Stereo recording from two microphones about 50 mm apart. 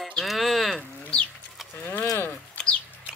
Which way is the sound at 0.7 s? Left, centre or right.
Left.